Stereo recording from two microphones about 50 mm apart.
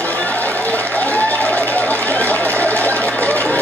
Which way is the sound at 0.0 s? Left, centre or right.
Left.